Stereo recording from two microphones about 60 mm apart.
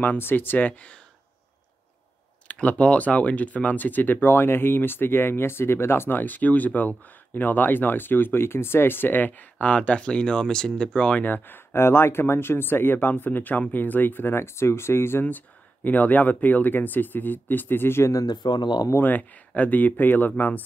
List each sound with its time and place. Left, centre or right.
0.0 s speech: left
2.4 s speech: left
11.2 s speech: left
15.2 s speech: left
18.9 s speech: left